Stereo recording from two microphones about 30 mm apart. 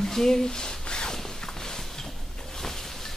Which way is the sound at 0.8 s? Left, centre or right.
Left.